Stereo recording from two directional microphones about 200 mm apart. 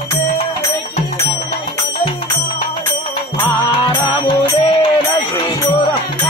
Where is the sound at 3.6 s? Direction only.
25° left (ahead or behind).